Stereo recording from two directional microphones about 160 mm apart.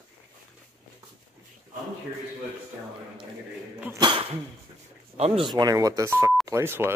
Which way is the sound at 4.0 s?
30° right (ahead or behind).